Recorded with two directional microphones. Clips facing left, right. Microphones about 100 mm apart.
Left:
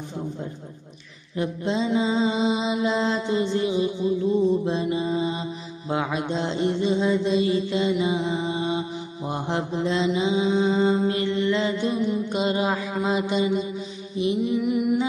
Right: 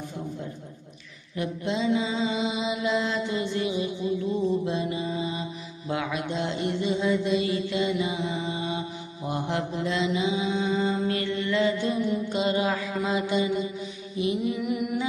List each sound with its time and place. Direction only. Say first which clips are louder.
1.3 s mantra: left 3 dB; 30° left (ahead or behind)